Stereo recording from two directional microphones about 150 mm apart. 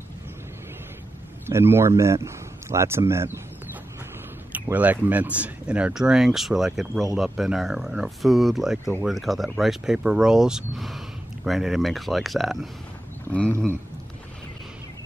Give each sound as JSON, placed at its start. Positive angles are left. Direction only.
{"t": 1.5, "sound": "speech", "side_deg": -15}
{"t": 4.5, "sound": "speech", "side_deg": -10}